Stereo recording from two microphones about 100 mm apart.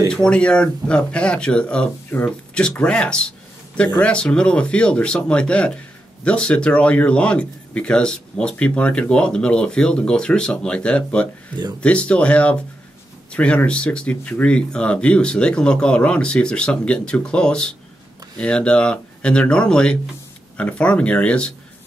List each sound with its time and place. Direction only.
0.1 s speech: 10° left (ahead or behind)